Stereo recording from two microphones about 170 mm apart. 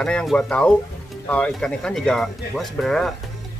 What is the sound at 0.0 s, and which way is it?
Speech, 5° left (ahead or behind).